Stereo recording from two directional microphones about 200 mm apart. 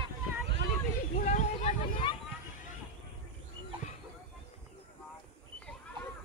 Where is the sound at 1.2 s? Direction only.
40° left (ahead or behind).